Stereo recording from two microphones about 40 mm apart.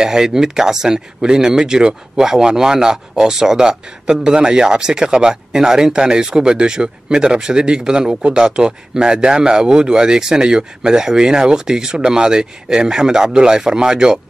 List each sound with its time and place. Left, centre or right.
0.0 s speech: centre